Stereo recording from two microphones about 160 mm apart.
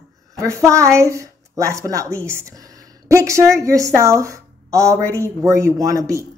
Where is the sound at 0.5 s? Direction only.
20° right (ahead or behind).